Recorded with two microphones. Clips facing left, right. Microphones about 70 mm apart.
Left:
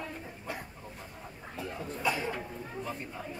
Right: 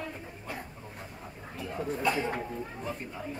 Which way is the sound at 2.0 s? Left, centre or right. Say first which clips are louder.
Right 2 dB; centre.